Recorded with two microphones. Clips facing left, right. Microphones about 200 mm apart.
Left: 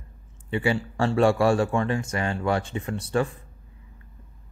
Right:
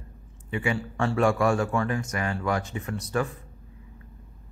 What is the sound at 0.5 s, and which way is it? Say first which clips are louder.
Speech: left 3 dB; 30° left (ahead or behind).